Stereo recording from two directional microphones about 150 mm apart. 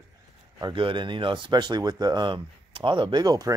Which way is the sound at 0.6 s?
30° right (ahead or behind).